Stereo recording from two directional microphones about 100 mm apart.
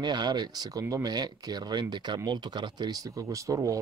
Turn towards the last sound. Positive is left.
turn(degrees=-35)  # may be behind; listen again after turning